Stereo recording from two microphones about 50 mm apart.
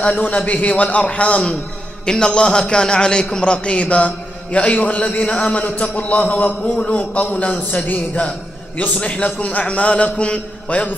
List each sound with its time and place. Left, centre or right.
0.0 s a man's voice: left